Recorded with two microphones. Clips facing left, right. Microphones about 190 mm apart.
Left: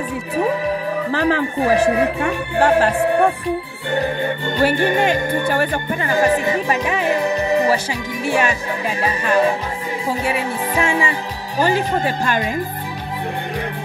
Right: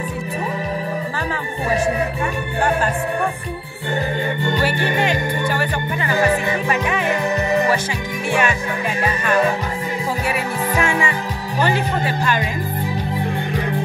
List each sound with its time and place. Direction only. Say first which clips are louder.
1.1 s speech: left 7 dB; 70° left (ahead or behind)
4.6 s speech: left 7 dB; 50° left (ahead or behind); by 7.2 s 35° left (ahead or behind)
8.3 s music: left 1 dB; 35° left (ahead or behind)